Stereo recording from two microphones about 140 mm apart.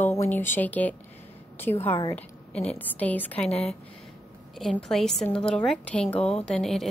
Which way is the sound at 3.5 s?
45° left (ahead or behind).